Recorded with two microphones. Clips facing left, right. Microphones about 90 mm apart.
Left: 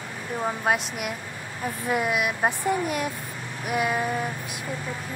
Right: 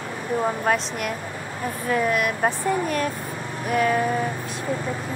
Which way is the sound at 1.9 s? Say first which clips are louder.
Right 3 dB; 10° left (ahead or behind).